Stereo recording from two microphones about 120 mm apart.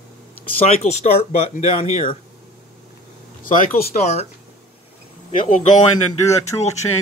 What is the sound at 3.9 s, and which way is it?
Speech, 90° left.